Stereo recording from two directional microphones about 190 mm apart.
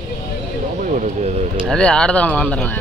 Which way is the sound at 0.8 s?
40° right (ahead or behind).